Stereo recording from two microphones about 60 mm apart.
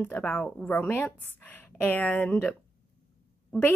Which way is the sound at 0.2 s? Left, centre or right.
Centre.